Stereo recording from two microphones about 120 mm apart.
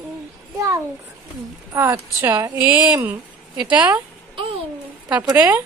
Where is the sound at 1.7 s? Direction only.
20° right (ahead or behind).